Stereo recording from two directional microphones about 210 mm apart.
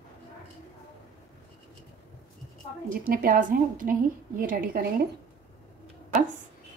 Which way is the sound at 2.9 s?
40° right (ahead or behind).